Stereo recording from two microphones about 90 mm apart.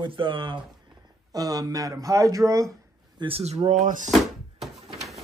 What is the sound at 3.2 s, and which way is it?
Speech, 60° right (ahead or behind).